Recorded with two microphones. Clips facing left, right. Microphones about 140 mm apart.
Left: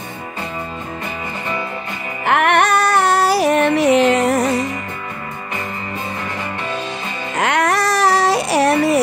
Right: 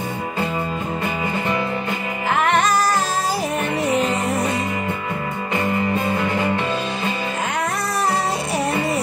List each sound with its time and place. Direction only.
2.2 s music: 65° left (ahead or behind); by 4.5 s 90° left
7.3 s music: 80° left